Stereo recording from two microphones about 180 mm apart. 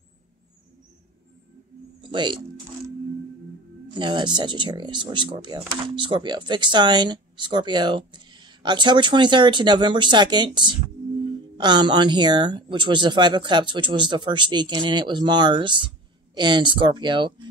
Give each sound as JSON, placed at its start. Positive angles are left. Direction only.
{"t": 2.0, "sound": "music", "side_deg": -25}
{"t": 3.9, "sound": "speech", "side_deg": -25}